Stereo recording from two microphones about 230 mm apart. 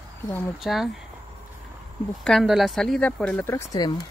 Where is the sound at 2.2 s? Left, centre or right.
Centre.